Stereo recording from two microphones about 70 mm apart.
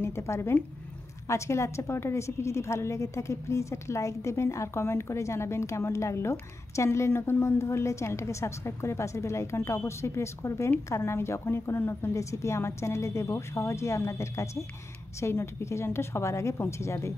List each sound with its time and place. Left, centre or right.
0.0 s a woman's voice: left